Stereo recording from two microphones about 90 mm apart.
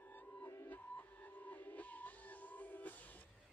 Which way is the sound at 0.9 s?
20° left (ahead or behind).